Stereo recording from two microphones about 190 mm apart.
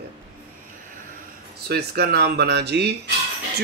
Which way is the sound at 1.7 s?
55° right (ahead or behind).